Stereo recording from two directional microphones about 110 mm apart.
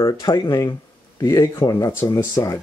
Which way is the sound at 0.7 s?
35° left (ahead or behind).